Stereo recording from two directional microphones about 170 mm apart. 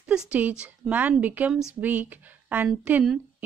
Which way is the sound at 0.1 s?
5° right (ahead or behind).